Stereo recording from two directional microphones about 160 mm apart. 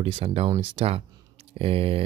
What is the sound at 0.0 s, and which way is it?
Speech, 35° right (ahead or behind).